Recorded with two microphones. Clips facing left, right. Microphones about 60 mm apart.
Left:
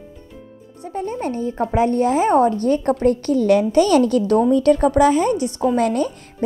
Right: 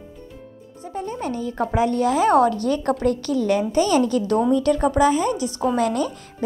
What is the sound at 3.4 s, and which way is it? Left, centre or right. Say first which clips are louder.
A woman's voice: left 5 dB; left.